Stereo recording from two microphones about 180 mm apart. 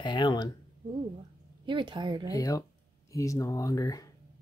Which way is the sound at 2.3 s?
20° left (ahead or behind).